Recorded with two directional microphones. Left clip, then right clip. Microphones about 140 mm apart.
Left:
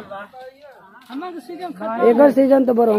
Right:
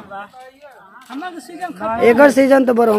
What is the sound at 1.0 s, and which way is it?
A man's voice, 15° right (ahead or behind).